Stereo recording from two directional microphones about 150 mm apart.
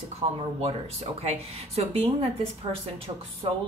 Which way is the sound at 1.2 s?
45° right (ahead or behind).